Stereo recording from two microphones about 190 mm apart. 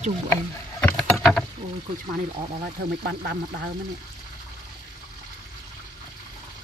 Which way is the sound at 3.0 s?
65° right (ahead or behind).